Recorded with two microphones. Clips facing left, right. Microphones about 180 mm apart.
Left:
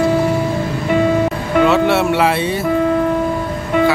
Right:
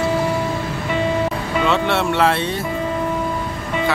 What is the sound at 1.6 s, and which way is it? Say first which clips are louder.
Speech: left 6 dB; 5° left (ahead or behind).